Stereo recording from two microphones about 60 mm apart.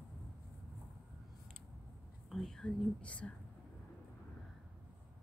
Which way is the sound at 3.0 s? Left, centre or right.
Left.